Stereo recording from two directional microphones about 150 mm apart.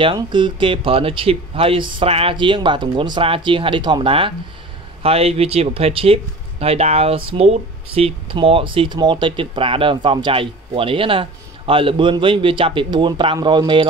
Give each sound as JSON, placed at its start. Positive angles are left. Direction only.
{"t": 0.0, "sound": "speech", "side_deg": -35}